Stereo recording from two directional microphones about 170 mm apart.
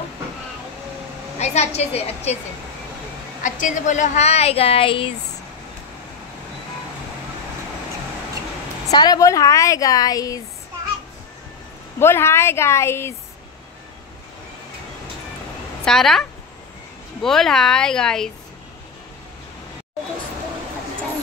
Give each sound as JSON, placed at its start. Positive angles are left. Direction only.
{"t": 1.4, "sound": "a woman's voice", "side_deg": 40}
{"t": 3.4, "sound": "a woman's voice", "side_deg": 45}
{"t": 8.9, "sound": "a woman's voice", "side_deg": 25}
{"t": 12.0, "sound": "a woman's voice", "side_deg": 15}
{"t": 15.8, "sound": "a woman's voice", "side_deg": 0}